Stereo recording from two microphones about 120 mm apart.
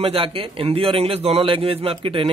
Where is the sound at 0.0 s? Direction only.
50° right (ahead or behind).